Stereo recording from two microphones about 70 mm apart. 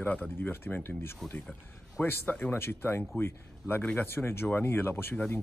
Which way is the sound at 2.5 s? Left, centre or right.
Left.